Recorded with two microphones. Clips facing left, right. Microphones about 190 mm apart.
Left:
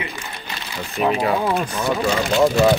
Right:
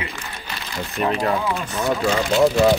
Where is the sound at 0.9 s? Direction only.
5° left (ahead or behind).